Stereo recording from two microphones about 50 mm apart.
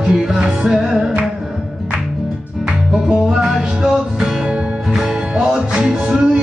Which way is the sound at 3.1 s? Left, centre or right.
Centre.